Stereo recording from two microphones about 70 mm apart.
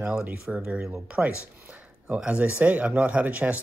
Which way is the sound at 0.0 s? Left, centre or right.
Centre.